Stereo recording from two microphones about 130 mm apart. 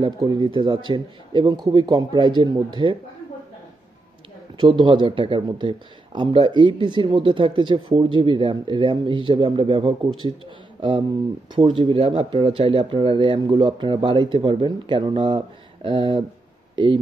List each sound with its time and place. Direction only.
0.2 s speech: 40° right (ahead or behind)
4.6 s speech: 40° right (ahead or behind)